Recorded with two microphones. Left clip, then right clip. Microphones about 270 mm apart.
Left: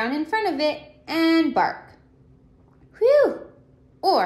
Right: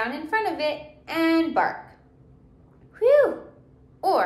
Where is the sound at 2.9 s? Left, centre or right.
Left.